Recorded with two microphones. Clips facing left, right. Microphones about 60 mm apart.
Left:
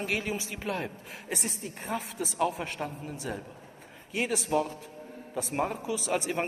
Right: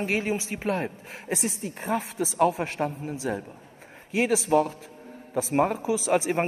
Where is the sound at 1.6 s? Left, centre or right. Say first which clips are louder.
Right 6 dB; right.